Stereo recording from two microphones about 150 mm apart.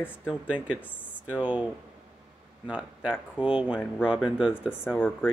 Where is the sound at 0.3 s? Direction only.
10° right (ahead or behind).